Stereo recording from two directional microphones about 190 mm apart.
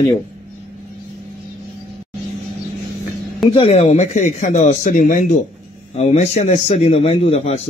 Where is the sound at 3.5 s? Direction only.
30° left (ahead or behind).